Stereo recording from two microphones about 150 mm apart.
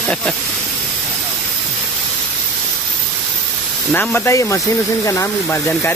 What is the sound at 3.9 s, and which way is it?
Speech, 10° left (ahead or behind).